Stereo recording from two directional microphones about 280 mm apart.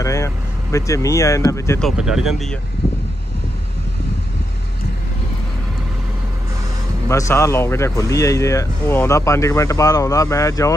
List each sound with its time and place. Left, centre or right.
0.0 s speech: centre
7.1 s a man's voice: centre